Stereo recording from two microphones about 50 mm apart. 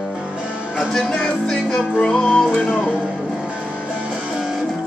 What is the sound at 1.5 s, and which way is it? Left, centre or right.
Music, centre.